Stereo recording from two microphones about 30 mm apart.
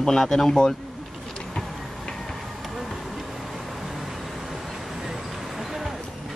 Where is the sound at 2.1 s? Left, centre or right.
Centre.